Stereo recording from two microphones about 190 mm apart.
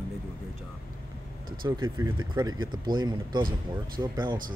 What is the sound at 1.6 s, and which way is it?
Speech, 25° right (ahead or behind).